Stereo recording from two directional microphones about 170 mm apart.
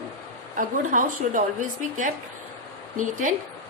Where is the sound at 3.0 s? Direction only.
50° right (ahead or behind).